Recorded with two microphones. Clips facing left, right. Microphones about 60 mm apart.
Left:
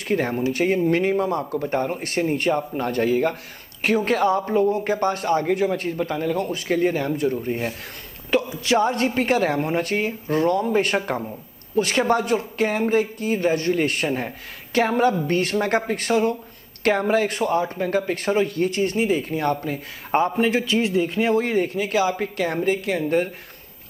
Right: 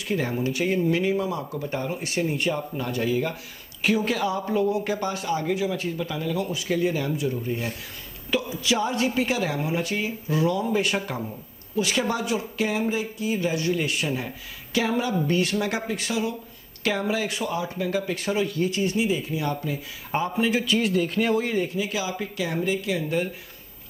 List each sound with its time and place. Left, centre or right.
0.1 s speech: left
20.7 s speech: left
21.4 s speech: left